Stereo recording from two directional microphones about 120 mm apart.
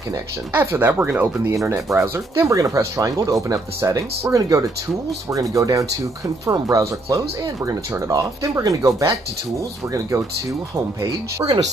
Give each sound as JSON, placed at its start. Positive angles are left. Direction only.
{"t": 0.6, "sound": "speech", "side_deg": -15}
{"t": 11.0, "sound": "speech", "side_deg": -25}